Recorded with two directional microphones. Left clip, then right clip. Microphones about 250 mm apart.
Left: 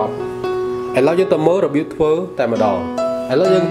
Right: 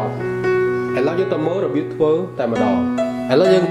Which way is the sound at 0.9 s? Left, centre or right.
Centre.